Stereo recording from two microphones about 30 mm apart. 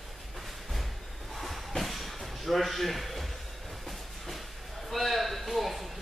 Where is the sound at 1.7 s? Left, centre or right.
Centre.